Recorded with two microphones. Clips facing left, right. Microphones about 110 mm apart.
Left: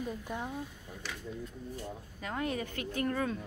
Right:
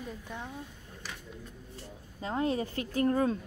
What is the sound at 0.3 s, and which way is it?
Speech, 10° left (ahead or behind).